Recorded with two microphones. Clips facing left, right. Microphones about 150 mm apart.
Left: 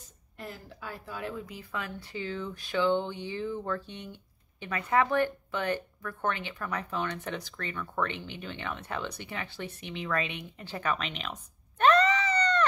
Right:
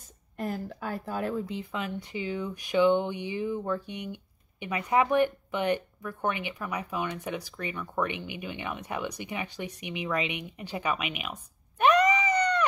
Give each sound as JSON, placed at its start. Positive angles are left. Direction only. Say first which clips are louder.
{"t": 0.4, "sound": "speech", "louder": "right 9 dB", "side_deg": -45}
{"t": 1.4, "sound": "speech", "louder": "right 5 dB", "side_deg": -25}
{"t": 11.8, "sound": "a sound", "louder": "right 1 dB", "side_deg": -15}